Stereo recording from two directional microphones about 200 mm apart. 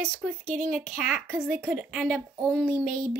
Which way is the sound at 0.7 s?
5° right (ahead or behind).